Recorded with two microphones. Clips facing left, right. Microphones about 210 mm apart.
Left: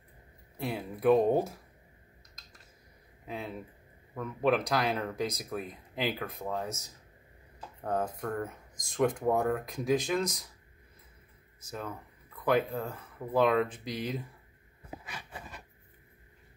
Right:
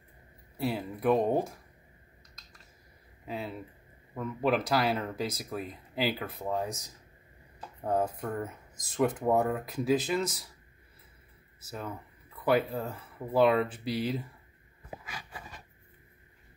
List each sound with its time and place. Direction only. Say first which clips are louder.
0.6 s speech: right 3 dB; 5° right (ahead or behind)
3.3 s speech: right 2 dB; 5° right (ahead or behind)
7.8 s speech: right 3 dB; 10° right (ahead or behind)
11.6 s speech: even; 5° right (ahead or behind)